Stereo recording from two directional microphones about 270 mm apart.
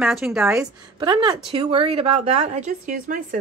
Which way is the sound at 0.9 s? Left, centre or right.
Centre.